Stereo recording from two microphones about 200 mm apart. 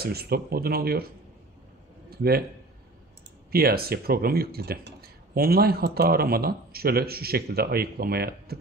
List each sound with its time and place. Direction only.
0.0 s speech: 50° right (ahead or behind)
2.0 s a man's voice: 50° right (ahead or behind)
3.5 s speech: 50° right (ahead or behind)